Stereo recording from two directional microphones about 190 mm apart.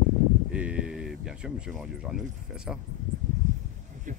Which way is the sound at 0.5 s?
5° right (ahead or behind).